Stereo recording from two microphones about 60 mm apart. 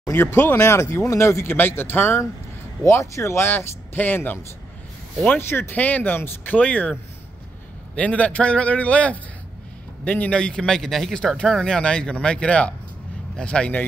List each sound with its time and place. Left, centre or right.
0.1 s speech: left
2.9 s speech: left
5.4 s speech: left
7.9 s speech: left